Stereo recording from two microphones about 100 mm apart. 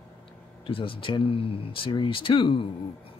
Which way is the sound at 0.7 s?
60° left (ahead or behind).